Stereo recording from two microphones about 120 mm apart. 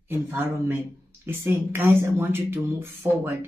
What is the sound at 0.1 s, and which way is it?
Speech, 20° right (ahead or behind).